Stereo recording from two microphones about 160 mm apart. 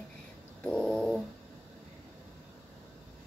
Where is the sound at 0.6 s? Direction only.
5° left (ahead or behind).